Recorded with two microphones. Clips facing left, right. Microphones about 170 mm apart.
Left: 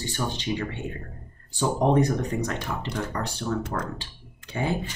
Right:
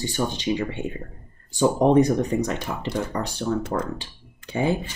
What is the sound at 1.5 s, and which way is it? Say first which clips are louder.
Speech: right 5 dB; 15° right (ahead or behind).